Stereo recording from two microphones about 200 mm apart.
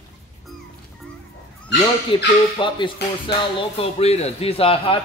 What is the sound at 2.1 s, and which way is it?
Speech, 25° left (ahead or behind).